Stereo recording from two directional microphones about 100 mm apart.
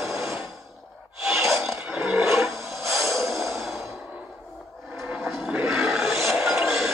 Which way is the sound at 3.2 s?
Centre (ahead or behind).